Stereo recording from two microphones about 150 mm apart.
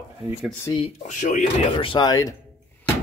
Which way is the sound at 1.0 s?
55° left (ahead or behind).